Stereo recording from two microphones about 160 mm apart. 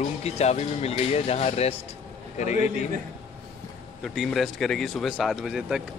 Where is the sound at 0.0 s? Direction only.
45° left (ahead or behind).